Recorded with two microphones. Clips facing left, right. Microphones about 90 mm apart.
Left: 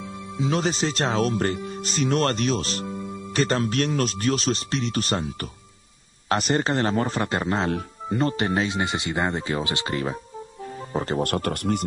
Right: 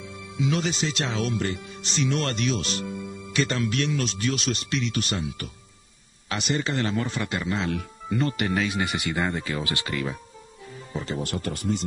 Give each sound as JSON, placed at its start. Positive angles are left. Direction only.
{"t": 0.4, "sound": "speech", "side_deg": 35}
{"t": 10.9, "sound": "speech", "side_deg": 45}